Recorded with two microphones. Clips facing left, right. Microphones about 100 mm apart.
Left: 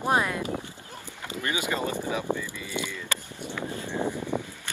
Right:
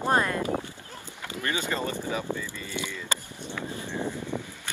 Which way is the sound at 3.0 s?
15° right (ahead or behind).